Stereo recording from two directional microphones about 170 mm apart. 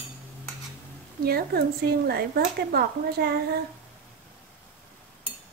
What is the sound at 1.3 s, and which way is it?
Speech, 65° right (ahead or behind).